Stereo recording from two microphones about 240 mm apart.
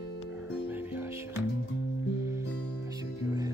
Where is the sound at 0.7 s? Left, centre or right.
Centre.